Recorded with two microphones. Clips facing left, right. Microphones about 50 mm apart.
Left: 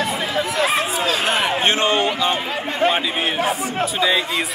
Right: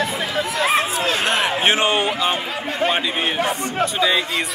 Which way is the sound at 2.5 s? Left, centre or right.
Left.